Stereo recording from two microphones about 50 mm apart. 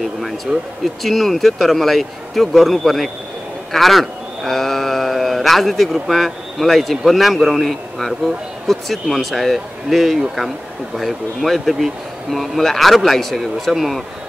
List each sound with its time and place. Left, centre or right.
0.0 s speech: centre